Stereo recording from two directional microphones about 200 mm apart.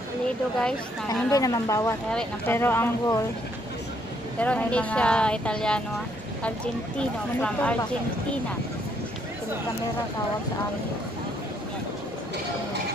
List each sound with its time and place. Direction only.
1.0 s speech: 15° left (ahead or behind)
4.4 s speech: 5° left (ahead or behind)
7.3 s speech: 5° left (ahead or behind)